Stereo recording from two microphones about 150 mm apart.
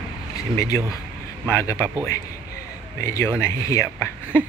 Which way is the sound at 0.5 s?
20° left (ahead or behind).